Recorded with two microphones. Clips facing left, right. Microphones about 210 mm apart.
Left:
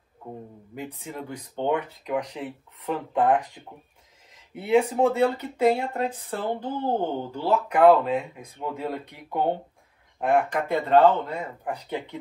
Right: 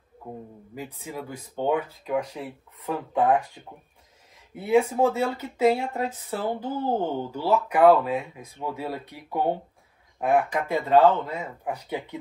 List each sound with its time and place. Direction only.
1.0 s speech: 5° right (ahead or behind)